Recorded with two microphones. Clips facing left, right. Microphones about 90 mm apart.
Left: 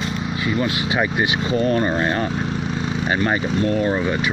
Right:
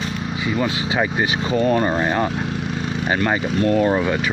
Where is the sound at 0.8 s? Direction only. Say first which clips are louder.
Even; 30° right (ahead or behind).